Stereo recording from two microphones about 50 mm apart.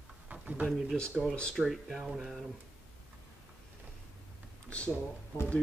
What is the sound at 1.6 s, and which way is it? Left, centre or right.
Speech, centre.